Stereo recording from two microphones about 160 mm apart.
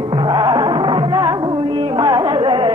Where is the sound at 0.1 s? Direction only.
30° right (ahead or behind).